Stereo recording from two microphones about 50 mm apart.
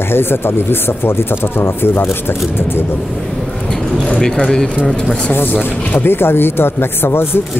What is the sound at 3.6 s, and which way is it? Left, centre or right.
Bird, centre.